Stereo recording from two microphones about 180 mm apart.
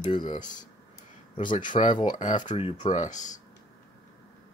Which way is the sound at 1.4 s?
45° left (ahead or behind).